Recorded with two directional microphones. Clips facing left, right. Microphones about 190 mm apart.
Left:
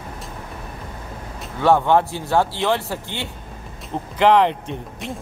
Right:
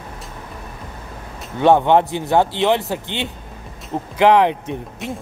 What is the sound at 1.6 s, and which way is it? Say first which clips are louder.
A man's voice: right 3 dB; 20° right (ahead or behind).